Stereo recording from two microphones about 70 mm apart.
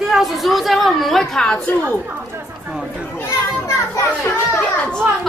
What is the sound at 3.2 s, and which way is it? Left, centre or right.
Children playing, left.